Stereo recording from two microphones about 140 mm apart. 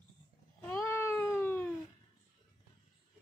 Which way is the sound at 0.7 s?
20° left (ahead or behind).